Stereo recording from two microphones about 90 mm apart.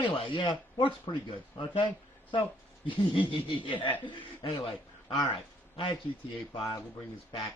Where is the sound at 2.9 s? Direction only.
70° left (ahead or behind).